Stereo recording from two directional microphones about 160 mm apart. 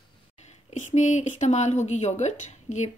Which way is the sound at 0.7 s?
50° left (ahead or behind).